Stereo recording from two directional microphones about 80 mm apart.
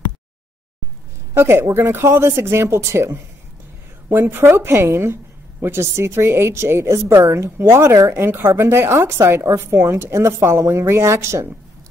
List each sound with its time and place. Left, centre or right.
1.3 s a woman's voice: right